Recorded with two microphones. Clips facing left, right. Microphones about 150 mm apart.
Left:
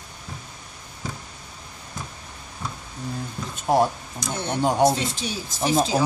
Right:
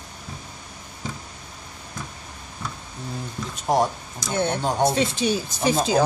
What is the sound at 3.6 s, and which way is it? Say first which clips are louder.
A man's voice: left 1 dB; centre (ahead or behind).